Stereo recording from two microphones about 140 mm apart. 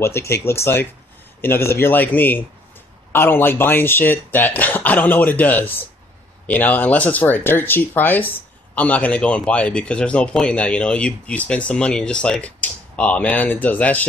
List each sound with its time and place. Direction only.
0.0 s speech: 20° left (ahead or behind)